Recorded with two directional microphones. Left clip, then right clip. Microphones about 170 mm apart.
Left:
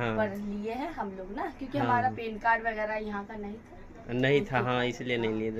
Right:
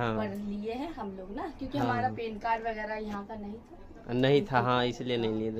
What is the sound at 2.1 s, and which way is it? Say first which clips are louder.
Speech: left 4 dB; 5° right (ahead or behind).